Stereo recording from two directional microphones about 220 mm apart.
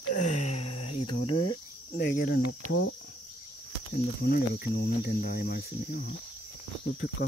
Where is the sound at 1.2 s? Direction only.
90° left.